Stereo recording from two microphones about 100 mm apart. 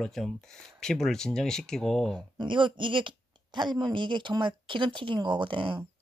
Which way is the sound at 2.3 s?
55° right (ahead or behind).